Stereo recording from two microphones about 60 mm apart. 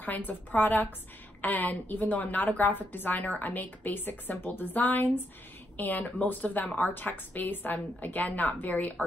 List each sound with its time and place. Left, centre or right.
0.0 s a woman's voice: left